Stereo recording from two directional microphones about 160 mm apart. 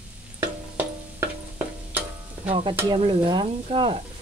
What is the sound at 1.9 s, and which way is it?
Stir, 10° right (ahead or behind).